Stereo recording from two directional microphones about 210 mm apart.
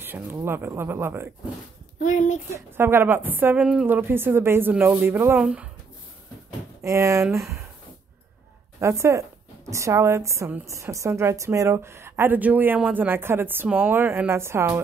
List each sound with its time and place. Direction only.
0.0 s a woman's voice: 10° right (ahead or behind)
2.0 s speech: 35° left (ahead or behind)
2.5 s a woman's voice: 10° right (ahead or behind)
6.8 s a woman's voice: 15° right (ahead or behind)
8.7 s a woman's voice: 15° right (ahead or behind)